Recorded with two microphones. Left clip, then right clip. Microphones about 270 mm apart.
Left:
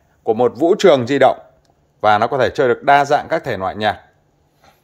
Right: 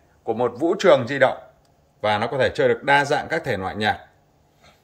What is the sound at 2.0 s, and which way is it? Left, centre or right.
Speech, centre.